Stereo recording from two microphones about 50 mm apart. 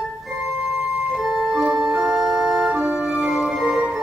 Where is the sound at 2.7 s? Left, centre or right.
Right.